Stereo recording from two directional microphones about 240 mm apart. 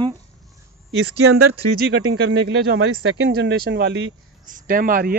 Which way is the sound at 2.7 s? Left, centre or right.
Right.